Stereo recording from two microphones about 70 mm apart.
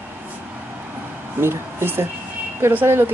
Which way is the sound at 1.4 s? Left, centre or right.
Right.